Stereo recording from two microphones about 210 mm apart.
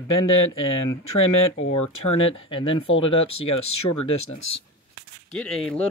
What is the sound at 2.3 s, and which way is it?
Speech, 25° left (ahead or behind).